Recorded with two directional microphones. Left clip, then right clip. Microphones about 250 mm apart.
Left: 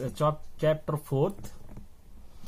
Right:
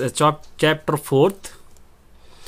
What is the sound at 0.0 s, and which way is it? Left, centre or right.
Speech, right.